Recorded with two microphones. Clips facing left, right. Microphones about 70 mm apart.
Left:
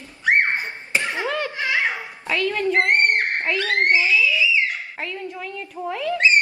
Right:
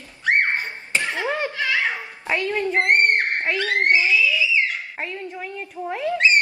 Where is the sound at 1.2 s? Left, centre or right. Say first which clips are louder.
Right 1 dB; right.